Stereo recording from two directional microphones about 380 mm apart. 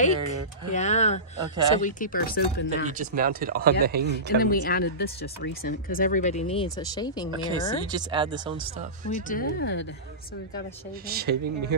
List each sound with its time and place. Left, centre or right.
0.0 s speech: centre
2.9 s speech: right
4.5 s speech: left
7.2 s speech: centre
9.1 s speech: left
11.1 s speech: right